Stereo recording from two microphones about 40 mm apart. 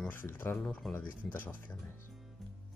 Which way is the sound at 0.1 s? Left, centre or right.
Left.